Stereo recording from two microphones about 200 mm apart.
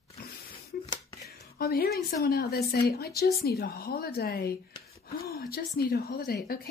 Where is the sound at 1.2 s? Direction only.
50° left (ahead or behind).